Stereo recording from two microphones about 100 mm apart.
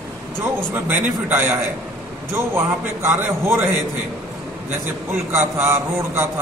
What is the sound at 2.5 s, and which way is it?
A man's voice, 25° right (ahead or behind).